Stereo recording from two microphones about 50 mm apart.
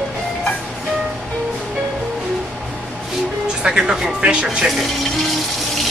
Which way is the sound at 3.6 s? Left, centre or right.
Centre.